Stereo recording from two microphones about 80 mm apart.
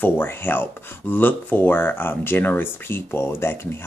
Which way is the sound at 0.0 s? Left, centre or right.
Left.